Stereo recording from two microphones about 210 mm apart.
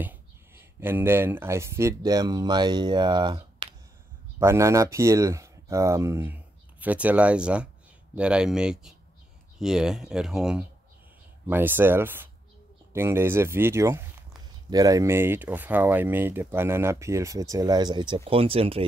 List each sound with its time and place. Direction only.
0.0 s speech: 10° right (ahead or behind); by 18.9 s 25° right (ahead or behind)